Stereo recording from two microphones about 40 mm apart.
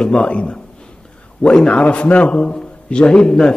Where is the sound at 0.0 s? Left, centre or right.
Left.